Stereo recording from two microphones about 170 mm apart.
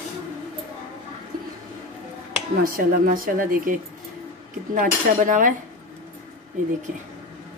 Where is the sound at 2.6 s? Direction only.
60° right (ahead or behind).